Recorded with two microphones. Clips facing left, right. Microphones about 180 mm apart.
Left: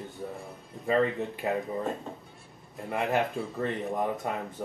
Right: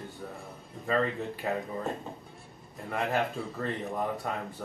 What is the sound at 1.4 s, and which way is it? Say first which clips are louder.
Speech: left 2 dB; 20° left (ahead or behind).